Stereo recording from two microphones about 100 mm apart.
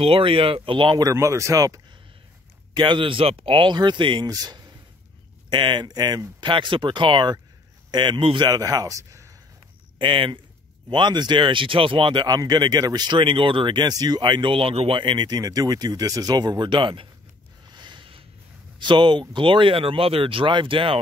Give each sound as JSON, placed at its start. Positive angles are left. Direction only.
{"t": 0.0, "sound": "speech", "side_deg": -65}
{"t": 1.1, "sound": "speech", "side_deg": -30}
{"t": 2.7, "sound": "speech", "side_deg": -50}
{"t": 4.3, "sound": "speech", "side_deg": -40}
{"t": 6.4, "sound": "speech", "side_deg": -55}
{"t": 8.5, "sound": "speech", "side_deg": -40}
{"t": 9.9, "sound": "speech", "side_deg": -55}
{"t": 17.6, "sound": "a sound", "side_deg": -50}
{"t": 18.8, "sound": "speech", "side_deg": -50}